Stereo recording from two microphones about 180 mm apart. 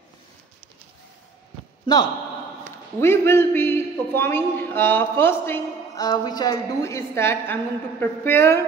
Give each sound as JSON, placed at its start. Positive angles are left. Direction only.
{"t": 2.6, "sound": "a man's voice", "side_deg": 15}